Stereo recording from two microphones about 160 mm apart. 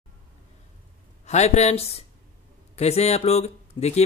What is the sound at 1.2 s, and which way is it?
Speech, 45° left (ahead or behind).